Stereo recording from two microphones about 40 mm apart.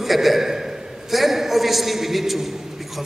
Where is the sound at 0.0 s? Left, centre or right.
Centre.